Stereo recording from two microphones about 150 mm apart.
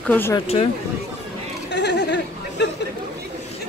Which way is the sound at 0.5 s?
35° left (ahead or behind).